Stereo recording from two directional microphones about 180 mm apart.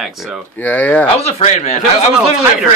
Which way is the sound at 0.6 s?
10° left (ahead or behind).